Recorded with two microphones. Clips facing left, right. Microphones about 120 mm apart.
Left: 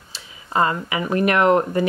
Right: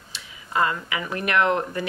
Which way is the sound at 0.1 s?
30° left (ahead or behind).